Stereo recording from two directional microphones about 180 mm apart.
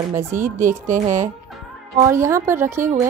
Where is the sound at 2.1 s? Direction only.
15° right (ahead or behind).